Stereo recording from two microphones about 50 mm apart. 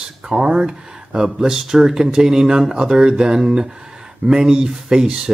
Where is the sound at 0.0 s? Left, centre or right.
Centre.